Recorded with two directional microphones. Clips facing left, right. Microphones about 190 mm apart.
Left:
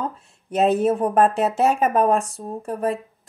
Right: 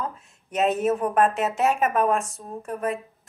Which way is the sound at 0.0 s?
30° left (ahead or behind).